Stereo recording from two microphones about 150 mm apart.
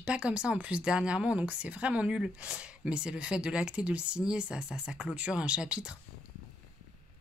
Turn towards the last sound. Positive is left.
turn(degrees=-5)  # may be behind; listen again after turning